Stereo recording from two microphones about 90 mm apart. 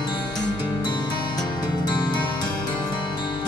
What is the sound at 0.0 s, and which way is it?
Music, 55° left (ahead or behind).